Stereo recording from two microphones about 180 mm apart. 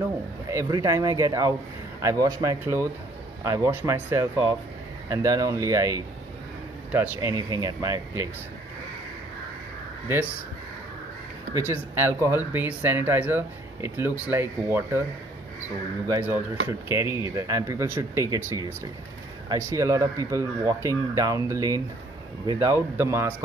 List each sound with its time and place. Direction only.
0.5 s speech: 20° right (ahead or behind)
11.5 s speech: 15° right (ahead or behind)
16.6 s speech: 15° right (ahead or behind)